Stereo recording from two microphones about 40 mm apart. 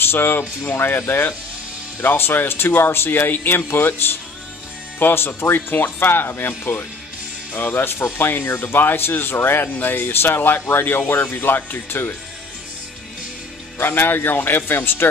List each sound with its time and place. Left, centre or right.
0.0 s speech: left
9.7 s speech: left
13.7 s speech: left